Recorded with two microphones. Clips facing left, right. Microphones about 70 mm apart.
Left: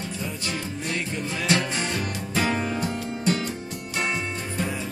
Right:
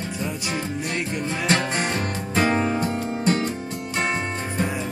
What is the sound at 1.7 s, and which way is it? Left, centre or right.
Music, right.